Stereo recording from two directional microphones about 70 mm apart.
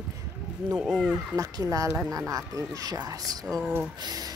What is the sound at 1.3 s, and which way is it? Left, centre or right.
Speech, right.